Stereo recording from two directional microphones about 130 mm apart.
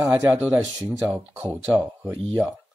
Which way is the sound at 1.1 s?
15° right (ahead or behind).